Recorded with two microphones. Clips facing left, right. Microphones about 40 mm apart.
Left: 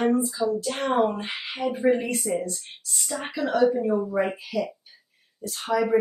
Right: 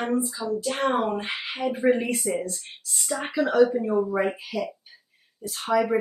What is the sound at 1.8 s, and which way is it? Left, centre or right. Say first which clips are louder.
Speech: even; centre.